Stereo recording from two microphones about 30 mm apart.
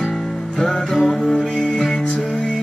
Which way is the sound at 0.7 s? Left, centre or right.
Centre.